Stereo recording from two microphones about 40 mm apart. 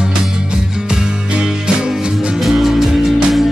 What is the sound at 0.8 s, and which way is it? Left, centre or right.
Music, right.